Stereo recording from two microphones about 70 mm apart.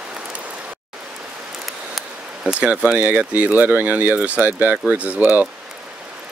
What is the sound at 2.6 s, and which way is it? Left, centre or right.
Speech, centre.